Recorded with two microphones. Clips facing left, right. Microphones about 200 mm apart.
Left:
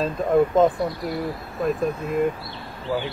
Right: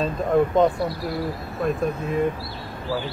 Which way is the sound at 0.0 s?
Centre (ahead or behind).